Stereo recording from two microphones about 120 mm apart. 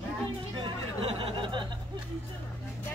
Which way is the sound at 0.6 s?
50° right (ahead or behind).